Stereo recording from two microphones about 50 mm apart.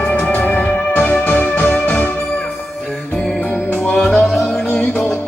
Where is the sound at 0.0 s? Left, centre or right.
Left.